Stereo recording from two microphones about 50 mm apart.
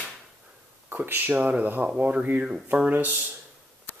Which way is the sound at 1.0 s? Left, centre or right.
Right.